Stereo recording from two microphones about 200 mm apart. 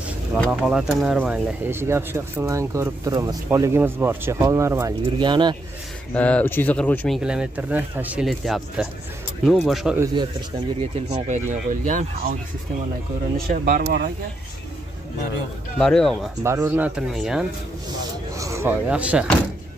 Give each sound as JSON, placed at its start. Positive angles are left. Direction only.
{"t": 0.5, "sound": "speech", "side_deg": -5}
{"t": 6.1, "sound": "speech", "side_deg": 5}
{"t": 7.2, "sound": "speech", "side_deg": -5}
{"t": 10.8, "sound": "speech", "side_deg": -35}
{"t": 13.5, "sound": "speech", "side_deg": -45}
{"t": 15.8, "sound": "speech", "side_deg": 5}
{"t": 16.4, "sound": "speech", "side_deg": -10}
{"t": 18.4, "sound": "speech", "side_deg": -15}